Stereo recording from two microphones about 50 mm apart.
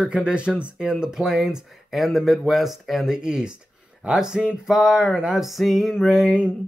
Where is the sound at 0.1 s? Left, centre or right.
Centre.